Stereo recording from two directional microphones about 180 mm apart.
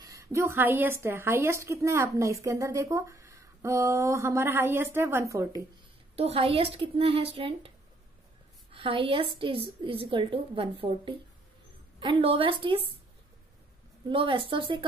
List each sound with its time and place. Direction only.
0.0 s speech: 15° right (ahead or behind)
6.1 s speech: 35° right (ahead or behind)
8.7 s a woman's voice: 30° right (ahead or behind)
14.1 s a woman's voice: 30° right (ahead or behind)